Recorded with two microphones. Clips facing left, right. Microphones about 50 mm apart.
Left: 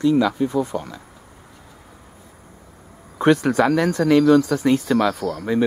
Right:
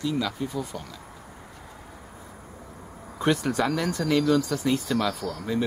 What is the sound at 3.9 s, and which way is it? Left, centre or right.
Speech, centre.